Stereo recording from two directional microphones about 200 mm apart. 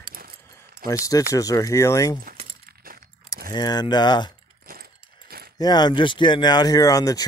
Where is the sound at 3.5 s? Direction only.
20° left (ahead or behind).